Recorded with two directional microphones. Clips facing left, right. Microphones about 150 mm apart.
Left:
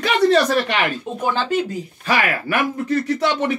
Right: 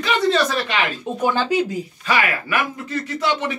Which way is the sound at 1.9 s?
45° left (ahead or behind).